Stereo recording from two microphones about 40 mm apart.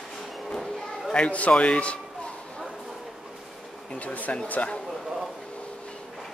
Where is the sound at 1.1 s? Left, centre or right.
Left.